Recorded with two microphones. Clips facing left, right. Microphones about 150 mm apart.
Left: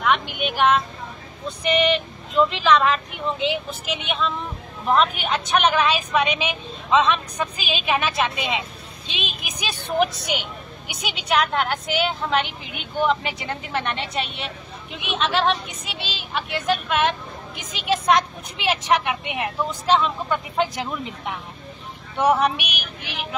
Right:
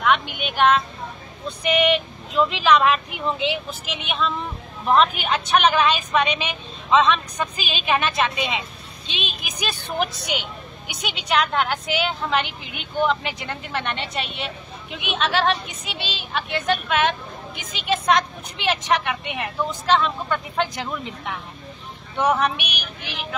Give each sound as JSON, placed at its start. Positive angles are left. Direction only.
{"t": 0.0, "sound": "a woman's voice", "side_deg": 0}
{"t": 1.6, "sound": "female singing", "side_deg": -5}
{"t": 3.4, "sound": "a woman's voice", "side_deg": 0}